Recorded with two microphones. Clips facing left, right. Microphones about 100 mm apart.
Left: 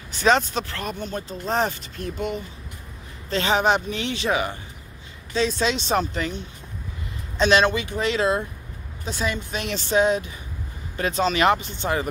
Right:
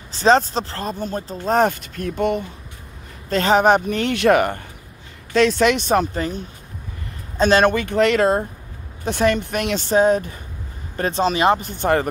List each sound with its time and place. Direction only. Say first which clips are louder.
0.1 s speech: right 4 dB; 35° right (ahead or behind); by 4.6 s 60° right (ahead or behind)
5.3 s speech: right 7 dB; 70° right (ahead or behind); by 6.0 s 55° right (ahead or behind)
6.1 s speech: right 3 dB; 40° right (ahead or behind); by 9.8 s 60° right (ahead or behind)
9.8 s speech: right 3 dB; 45° right (ahead or behind)
11.6 s speech: right 6 dB; 50° right (ahead or behind)